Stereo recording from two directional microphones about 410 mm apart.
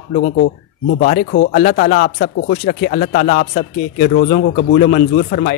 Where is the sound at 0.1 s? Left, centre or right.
Left.